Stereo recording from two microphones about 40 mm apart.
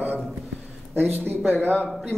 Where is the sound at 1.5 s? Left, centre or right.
Left.